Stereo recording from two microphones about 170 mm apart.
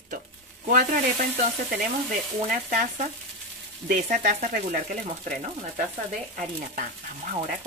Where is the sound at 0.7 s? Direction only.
50° right (ahead or behind).